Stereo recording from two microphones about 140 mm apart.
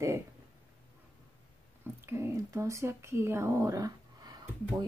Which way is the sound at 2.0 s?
20° right (ahead or behind).